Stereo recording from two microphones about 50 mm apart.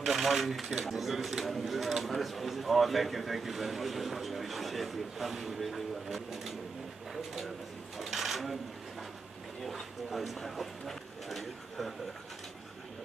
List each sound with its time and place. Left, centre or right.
0.0 s speech: centre
8.0 s speech: centre
9.6 s speech: centre